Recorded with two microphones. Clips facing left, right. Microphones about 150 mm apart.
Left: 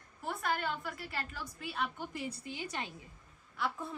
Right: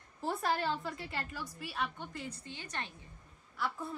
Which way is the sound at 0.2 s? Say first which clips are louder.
Right 2 dB; 30° right (ahead or behind).